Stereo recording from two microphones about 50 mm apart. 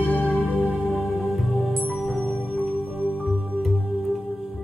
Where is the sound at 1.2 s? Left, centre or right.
Centre.